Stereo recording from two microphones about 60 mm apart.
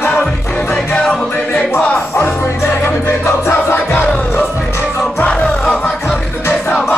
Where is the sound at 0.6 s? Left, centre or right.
Centre.